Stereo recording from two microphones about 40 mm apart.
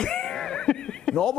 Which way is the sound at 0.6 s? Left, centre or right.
Centre.